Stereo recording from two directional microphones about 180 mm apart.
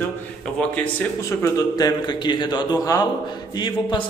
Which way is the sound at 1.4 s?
20° left (ahead or behind).